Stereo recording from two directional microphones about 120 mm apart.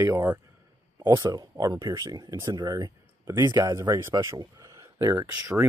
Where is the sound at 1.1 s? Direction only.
30° right (ahead or behind).